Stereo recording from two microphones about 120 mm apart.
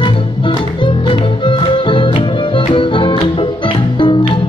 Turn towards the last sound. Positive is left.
turn(degrees=45)  # may be behind; listen again after turning